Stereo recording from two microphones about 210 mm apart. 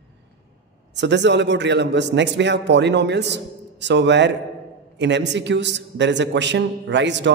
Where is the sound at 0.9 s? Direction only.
55° right (ahead or behind).